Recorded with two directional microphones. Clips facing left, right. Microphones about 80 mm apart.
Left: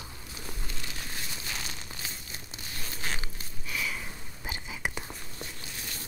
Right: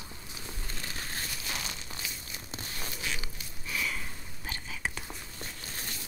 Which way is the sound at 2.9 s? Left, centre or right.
Left.